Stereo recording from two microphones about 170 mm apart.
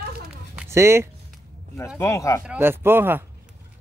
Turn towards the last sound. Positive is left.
turn(degrees=-10)  # may be behind; listen again after turning